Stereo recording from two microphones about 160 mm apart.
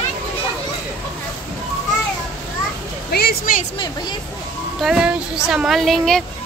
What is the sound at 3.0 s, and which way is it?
Speech, 75° left (ahead or behind).